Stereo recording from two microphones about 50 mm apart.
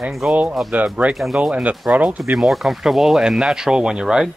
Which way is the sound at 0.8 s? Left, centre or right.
Right.